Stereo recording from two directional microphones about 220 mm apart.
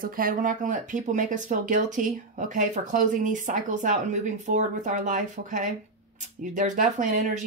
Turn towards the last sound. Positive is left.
turn(degrees=-35)  # may be behind; listen again after turning